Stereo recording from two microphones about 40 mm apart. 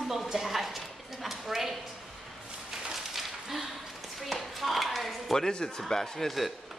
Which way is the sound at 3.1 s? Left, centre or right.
Centre.